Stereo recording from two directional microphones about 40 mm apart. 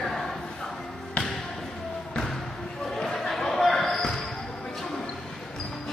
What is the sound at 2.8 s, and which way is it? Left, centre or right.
Basketball bounce, centre.